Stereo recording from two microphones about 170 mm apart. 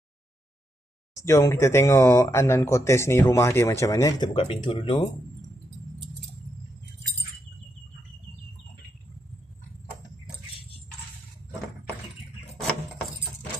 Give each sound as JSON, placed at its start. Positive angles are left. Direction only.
{"t": 1.1, "sound": "speech", "side_deg": 15}
{"t": 4.4, "sound": "speech", "side_deg": 35}